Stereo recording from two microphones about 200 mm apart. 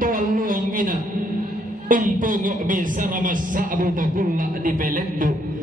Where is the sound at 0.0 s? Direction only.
45° right (ahead or behind).